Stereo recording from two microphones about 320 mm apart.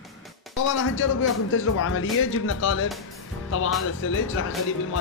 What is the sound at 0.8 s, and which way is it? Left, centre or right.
A man's voice, left.